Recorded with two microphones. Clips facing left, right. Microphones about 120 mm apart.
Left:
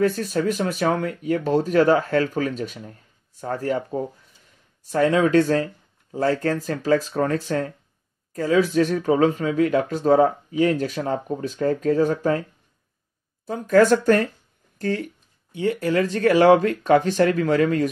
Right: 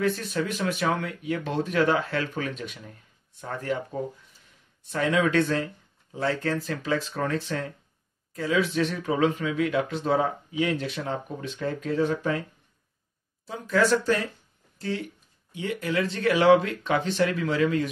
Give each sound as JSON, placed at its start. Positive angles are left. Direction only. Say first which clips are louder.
{"t": 0.0, "sound": "speech", "louder": "left 6 dB", "side_deg": 40}
{"t": 13.5, "sound": "speech", "louder": "left 7 dB", "side_deg": 50}